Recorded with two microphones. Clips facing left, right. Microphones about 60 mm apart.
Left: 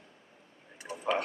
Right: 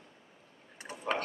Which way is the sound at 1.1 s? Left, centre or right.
Right.